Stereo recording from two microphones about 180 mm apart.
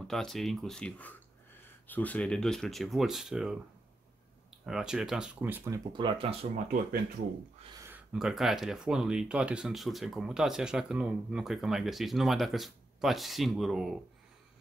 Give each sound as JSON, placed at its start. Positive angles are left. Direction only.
{"t": 0.0, "sound": "speech", "side_deg": 0}
{"t": 4.6, "sound": "speech", "side_deg": -5}
{"t": 5.9, "sound": "speech", "side_deg": -30}
{"t": 7.8, "sound": "speech", "side_deg": -10}